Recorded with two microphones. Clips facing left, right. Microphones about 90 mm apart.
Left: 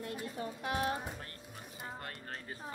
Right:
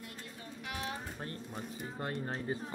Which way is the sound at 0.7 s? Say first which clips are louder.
Left 6 dB; 40° left (ahead or behind).